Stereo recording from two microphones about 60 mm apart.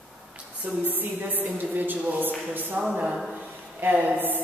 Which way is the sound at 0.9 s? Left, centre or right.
Right.